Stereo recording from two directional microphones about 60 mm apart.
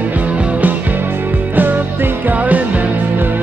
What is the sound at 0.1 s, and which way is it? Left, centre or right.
Music, right.